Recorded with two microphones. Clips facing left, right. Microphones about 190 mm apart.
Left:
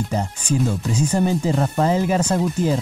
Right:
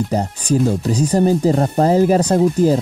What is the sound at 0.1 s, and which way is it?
Speech, 40° right (ahead or behind).